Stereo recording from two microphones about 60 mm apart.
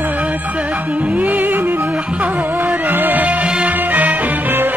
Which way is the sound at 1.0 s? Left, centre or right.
Centre.